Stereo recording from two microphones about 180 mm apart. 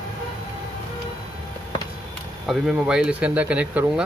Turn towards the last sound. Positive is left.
turn(degrees=-10)  # may be behind; listen again after turning